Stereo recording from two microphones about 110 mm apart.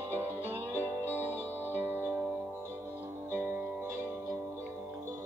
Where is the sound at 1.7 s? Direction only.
20° right (ahead or behind).